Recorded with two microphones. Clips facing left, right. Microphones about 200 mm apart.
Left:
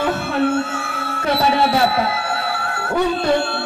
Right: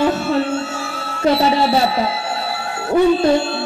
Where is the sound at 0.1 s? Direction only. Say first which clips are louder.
Even; 55° left (ahead or behind).